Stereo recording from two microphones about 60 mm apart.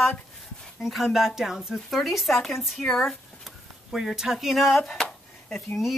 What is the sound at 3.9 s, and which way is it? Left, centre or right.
Speech, centre.